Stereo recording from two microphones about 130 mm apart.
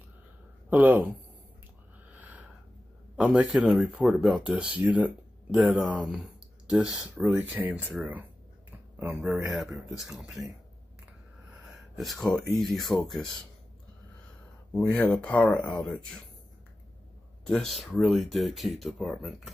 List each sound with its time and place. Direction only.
0.7 s speech: 15° right (ahead or behind)
2.0 s a sound: 10° right (ahead or behind)
3.2 s a man's voice: 10° right (ahead or behind)
12.0 s speech: centre (ahead or behind)
14.7 s speech: 10° left (ahead or behind)
17.5 s speech: 5° left (ahead or behind)